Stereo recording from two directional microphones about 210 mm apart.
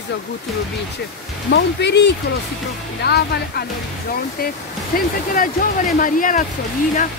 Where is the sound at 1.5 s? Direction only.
55° left (ahead or behind).